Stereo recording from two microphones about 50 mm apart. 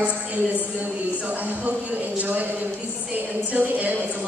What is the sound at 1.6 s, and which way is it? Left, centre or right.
Speech, right.